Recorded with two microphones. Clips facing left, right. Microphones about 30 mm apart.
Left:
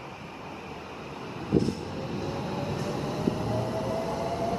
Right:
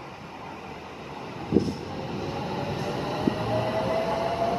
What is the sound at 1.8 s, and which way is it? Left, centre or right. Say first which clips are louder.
Train: right 1 dB; centre.